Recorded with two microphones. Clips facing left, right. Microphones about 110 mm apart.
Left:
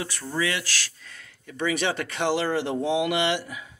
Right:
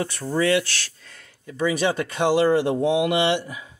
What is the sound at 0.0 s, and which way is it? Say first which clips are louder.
Speech: right 6 dB; 35° right (ahead or behind).